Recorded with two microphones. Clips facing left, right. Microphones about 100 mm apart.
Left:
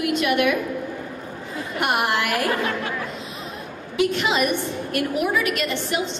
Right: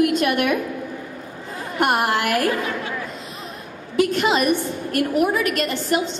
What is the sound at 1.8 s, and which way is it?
Speech, 40° right (ahead or behind).